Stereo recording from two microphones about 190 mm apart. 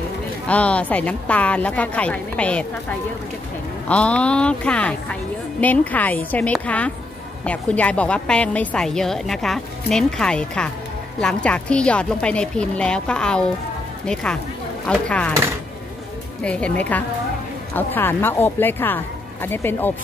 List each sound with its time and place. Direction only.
0.5 s a woman's voice: 5° left (ahead or behind)
16.4 s a woman's voice: 5° left (ahead or behind)